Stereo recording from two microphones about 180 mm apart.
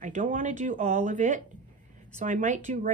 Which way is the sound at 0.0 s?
45° right (ahead or behind).